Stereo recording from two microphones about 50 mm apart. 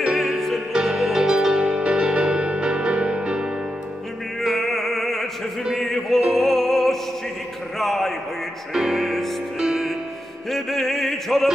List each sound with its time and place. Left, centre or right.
0.2 s music: centre
0.7 s music: centre
4.4 s music: centre
5.8 s opera: centre
7.8 s a sound: centre
8.7 s music: centre
10.5 s opera: centre